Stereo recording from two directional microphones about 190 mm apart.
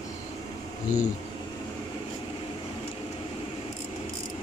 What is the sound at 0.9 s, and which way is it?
Speech, 40° left (ahead or behind).